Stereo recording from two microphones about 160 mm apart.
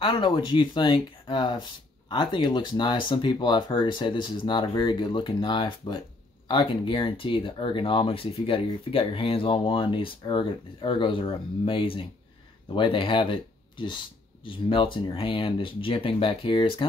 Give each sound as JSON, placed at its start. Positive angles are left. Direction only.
{"t": 0.0, "sound": "speech", "side_deg": 35}